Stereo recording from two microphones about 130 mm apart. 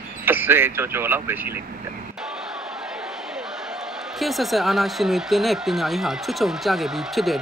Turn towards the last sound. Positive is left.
turn(degrees=0)  # may be behind; listen again after turning